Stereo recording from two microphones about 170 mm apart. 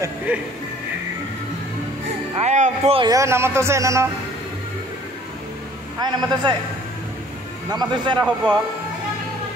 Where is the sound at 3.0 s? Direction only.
20° right (ahead or behind).